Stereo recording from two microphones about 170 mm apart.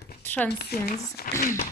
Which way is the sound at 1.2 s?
70° left (ahead or behind).